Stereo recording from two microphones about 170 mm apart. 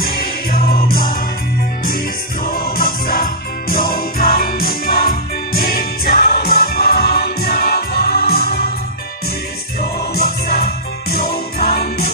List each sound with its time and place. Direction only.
0.0 s music: 60° left (ahead or behind)
2.4 s music: 60° left (ahead or behind)
9.8 s music: 60° left (ahead or behind)